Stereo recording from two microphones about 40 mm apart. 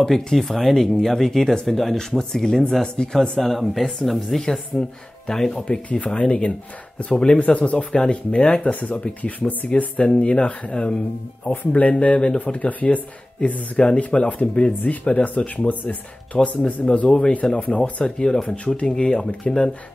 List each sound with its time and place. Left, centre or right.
0.1 s speech: centre
4.5 s speech: centre
5.7 s speech: left
11.4 s speech: left
14.7 s speech: left
17.4 s speech: centre